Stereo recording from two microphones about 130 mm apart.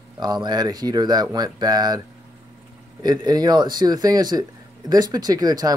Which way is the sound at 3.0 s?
30° right (ahead or behind).